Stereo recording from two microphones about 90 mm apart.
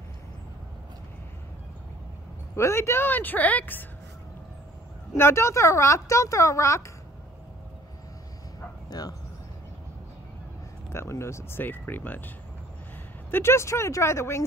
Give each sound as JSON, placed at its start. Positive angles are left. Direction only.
{"t": 2.5, "sound": "speech", "side_deg": 30}
{"t": 5.1, "sound": "a woman's voice", "side_deg": 30}
{"t": 9.0, "sound": "speech", "side_deg": 45}
{"t": 10.9, "sound": "speech", "side_deg": 30}
{"t": 13.3, "sound": "a woman's voice", "side_deg": 30}